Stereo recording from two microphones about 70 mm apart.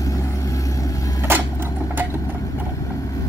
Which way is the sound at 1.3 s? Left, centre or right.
Right.